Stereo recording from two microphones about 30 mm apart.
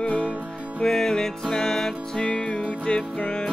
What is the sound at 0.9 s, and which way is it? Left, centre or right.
Music, centre.